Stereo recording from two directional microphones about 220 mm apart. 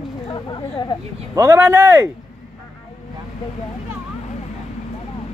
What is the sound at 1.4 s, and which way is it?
Speech, 10° right (ahead or behind).